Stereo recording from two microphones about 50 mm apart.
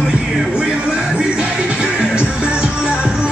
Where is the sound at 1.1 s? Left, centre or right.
Right.